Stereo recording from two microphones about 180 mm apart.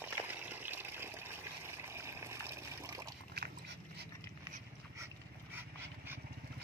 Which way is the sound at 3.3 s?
65° right (ahead or behind).